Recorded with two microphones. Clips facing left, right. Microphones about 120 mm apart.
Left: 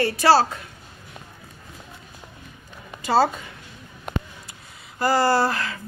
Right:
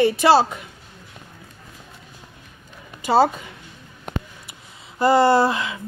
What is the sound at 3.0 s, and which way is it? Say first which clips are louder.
Speech: right 3 dB; 15° right (ahead or behind).